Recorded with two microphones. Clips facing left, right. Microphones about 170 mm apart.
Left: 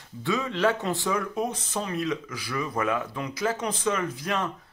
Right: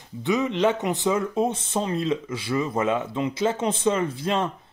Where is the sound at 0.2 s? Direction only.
20° right (ahead or behind).